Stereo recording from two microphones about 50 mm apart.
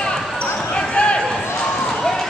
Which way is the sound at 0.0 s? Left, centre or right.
Centre.